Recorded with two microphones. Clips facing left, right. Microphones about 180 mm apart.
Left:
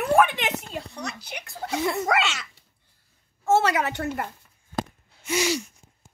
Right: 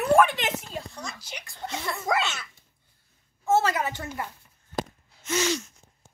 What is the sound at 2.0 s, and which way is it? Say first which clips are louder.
Speech: left 3 dB; 75° left (ahead or behind).